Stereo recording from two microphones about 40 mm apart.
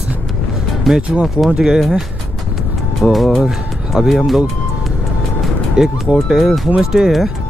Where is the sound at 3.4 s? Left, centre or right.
Centre.